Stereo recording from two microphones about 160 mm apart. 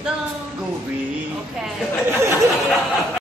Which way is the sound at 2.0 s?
15° right (ahead or behind).